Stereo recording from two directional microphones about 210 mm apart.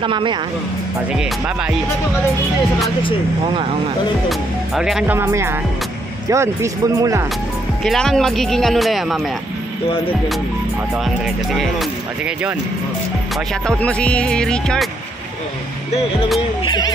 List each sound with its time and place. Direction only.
0.0 s speech: 25° right (ahead or behind)
1.1 s speech: 5° right (ahead or behind)
4.3 s speech: centre (ahead or behind)
7.8 s speech: centre (ahead or behind)
11.2 s speech: centre (ahead or behind)
13.7 s speech: 5° left (ahead or behind)
15.9 s speech: 30° left (ahead or behind)